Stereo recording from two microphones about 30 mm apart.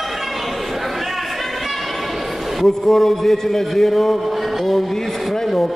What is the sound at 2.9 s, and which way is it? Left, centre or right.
A man's voice, centre.